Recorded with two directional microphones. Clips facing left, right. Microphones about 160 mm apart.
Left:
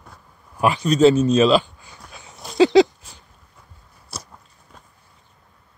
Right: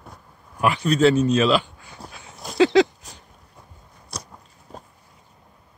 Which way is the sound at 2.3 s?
Centre (ahead or behind).